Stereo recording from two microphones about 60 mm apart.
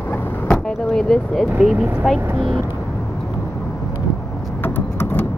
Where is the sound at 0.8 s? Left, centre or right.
Centre.